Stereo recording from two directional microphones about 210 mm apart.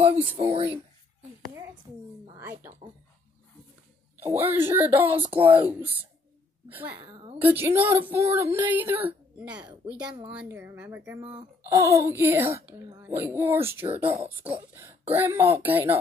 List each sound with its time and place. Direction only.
0.4 s speech: 25° right (ahead or behind)
1.9 s speech: 10° right (ahead or behind)
4.2 s speech: 10° right (ahead or behind)
5.4 s speech: 25° right (ahead or behind)
5.7 s speech: 10° right (ahead or behind)